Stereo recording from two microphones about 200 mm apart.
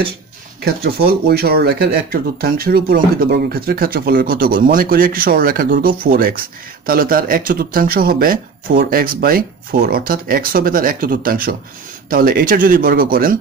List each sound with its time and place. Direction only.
0.7 s speech: 50° right (ahead or behind)